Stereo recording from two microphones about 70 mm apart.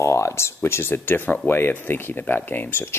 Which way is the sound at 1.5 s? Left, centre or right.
Left.